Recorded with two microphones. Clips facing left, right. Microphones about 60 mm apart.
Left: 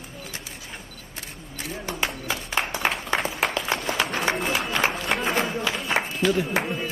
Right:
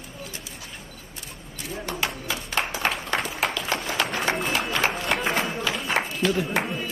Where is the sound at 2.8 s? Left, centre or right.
Centre.